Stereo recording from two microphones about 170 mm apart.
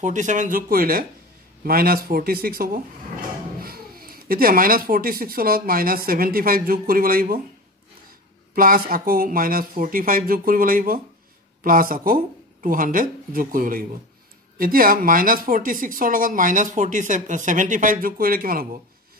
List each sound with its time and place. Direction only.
0.0 s speech: 45° right (ahead or behind)
8.5 s speech: 55° right (ahead or behind)